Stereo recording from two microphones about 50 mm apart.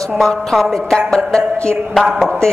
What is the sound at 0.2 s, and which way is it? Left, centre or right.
A woman's voice, centre.